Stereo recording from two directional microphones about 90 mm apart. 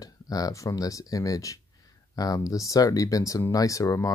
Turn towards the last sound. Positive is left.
turn(degrees=35)  # may be behind; listen again after turning